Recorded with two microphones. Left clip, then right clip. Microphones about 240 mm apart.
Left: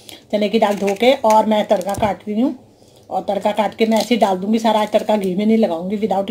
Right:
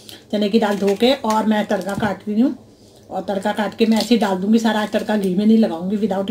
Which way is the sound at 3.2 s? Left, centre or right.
Centre.